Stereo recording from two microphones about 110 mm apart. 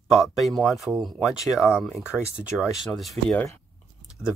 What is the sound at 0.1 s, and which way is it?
Speech, centre (ahead or behind).